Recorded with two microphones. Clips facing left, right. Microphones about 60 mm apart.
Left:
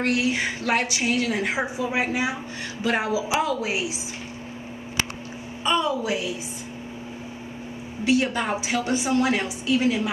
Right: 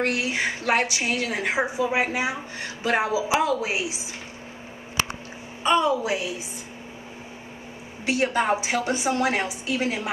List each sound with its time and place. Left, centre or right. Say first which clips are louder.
0.0 s a woman's voice: left 1 dB; right
5.6 s a woman's voice: right 2 dB; right
8.0 s a woman's voice: left 1 dB; right